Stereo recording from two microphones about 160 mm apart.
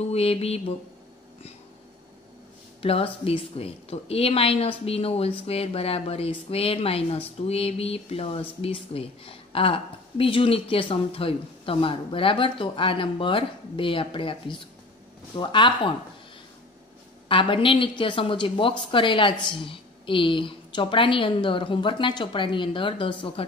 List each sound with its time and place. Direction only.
0.1 s a woman's voice: 40° left (ahead or behind)
2.8 s a woman's voice: 35° left (ahead or behind)
17.3 s a woman's voice: 30° left (ahead or behind)